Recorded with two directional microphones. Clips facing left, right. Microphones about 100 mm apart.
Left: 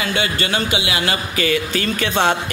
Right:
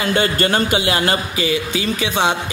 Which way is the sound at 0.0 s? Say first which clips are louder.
Right 4 dB; 40° right (ahead or behind).